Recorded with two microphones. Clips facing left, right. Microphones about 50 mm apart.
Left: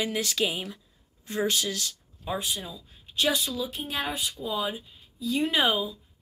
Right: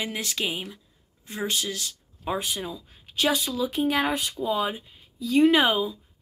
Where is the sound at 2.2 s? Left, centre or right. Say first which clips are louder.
Right 3 dB; right.